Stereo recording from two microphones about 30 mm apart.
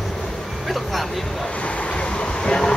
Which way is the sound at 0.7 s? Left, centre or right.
Centre.